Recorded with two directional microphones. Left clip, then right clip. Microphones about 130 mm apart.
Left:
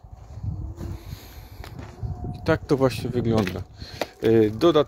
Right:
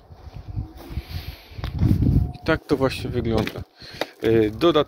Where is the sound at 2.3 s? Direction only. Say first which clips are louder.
Left 1 dB; 70° left (ahead or behind); by 4.0 s 85° left.